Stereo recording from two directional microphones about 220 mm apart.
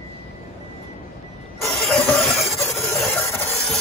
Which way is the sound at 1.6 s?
Centre (ahead or behind).